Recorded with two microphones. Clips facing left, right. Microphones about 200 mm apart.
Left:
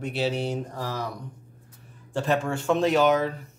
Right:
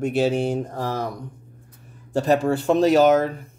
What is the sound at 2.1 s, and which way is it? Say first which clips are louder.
Speech: right 6 dB; 40° right (ahead or behind).